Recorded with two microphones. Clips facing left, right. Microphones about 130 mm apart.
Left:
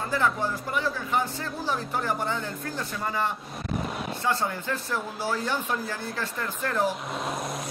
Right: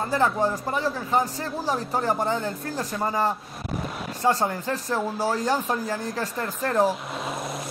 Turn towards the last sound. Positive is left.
turn(degrees=-40)  # may be behind; listen again after turning